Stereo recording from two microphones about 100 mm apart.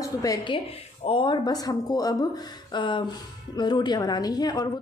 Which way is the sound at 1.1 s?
60° left (ahead or behind).